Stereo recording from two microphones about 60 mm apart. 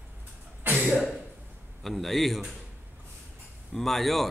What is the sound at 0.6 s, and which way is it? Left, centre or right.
Cough, right.